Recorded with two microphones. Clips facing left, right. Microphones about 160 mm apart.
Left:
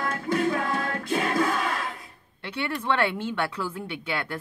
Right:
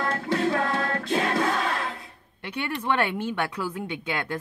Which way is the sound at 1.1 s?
25° right (ahead or behind).